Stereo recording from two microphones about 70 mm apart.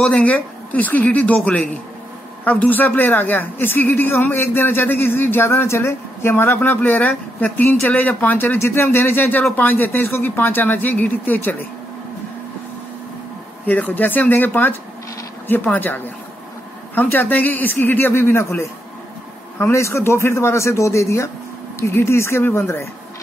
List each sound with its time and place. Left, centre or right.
0.1 s a woman's voice: centre
13.7 s a woman's voice: left